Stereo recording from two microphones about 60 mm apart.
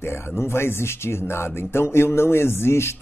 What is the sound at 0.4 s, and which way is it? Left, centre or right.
A man's voice, left.